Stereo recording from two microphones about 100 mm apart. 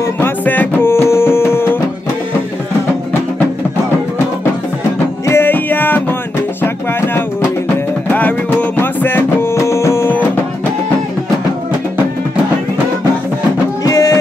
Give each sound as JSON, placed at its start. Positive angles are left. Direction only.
{"t": 0.0, "sound": "music", "side_deg": 20}
{"t": 5.2, "sound": "music", "side_deg": 25}
{"t": 13.8, "sound": "music", "side_deg": 35}